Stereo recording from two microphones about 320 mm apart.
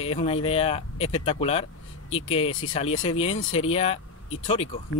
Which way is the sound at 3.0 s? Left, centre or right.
Centre.